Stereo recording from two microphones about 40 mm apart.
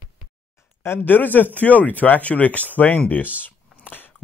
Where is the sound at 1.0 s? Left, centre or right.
Left.